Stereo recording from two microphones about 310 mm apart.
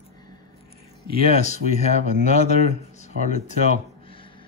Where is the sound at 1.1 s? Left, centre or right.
Centre.